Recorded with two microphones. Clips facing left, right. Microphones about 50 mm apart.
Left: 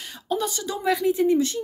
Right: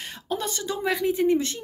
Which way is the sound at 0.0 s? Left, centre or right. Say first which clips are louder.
Left 3 dB; right.